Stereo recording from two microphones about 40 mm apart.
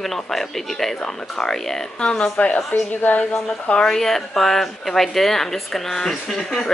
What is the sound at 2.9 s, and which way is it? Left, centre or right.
Speech, left.